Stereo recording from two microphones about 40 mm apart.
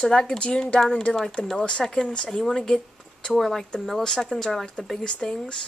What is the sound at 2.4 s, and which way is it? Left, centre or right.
Speech, centre.